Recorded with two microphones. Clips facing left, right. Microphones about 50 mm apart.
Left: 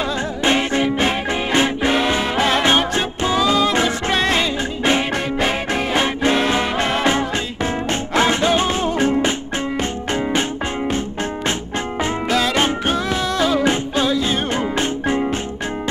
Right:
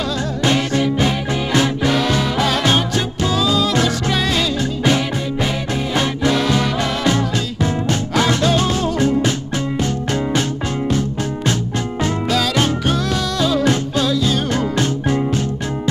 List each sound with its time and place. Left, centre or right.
0.4 s music: left
12.0 s music: left